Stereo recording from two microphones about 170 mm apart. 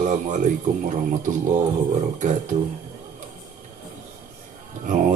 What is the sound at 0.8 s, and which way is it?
Speech, 50° right (ahead or behind).